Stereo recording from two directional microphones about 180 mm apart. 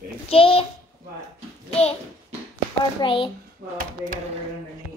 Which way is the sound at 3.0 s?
30° left (ahead or behind).